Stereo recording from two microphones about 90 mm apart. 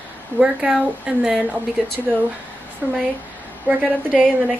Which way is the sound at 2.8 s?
20° right (ahead or behind).